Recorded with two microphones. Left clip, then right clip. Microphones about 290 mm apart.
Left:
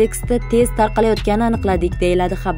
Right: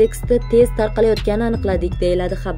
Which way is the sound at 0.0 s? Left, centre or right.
Left.